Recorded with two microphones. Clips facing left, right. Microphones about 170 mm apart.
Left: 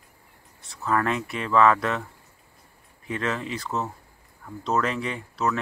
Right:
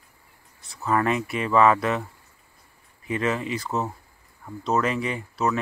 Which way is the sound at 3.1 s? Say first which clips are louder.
Right 3 dB; 5° right (ahead or behind).